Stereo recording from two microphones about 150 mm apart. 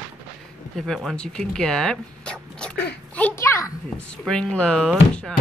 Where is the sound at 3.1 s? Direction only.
15° left (ahead or behind).